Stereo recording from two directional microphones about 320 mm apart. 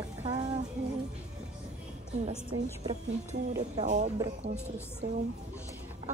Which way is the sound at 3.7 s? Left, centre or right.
Right.